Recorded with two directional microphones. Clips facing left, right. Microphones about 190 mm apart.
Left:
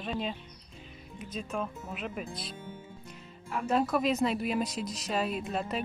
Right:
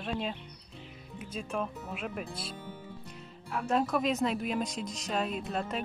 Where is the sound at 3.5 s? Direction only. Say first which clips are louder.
Left 1 dB; centre (ahead or behind).